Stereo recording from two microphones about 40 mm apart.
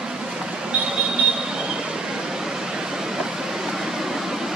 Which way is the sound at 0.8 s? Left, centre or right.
Right.